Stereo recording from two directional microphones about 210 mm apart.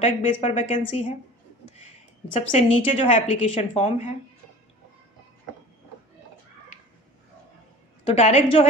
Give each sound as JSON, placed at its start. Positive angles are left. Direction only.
{"t": 0.0, "sound": "speech", "side_deg": 30}
{"t": 2.5, "sound": "a woman's voice", "side_deg": 30}
{"t": 8.0, "sound": "a woman's voice", "side_deg": 30}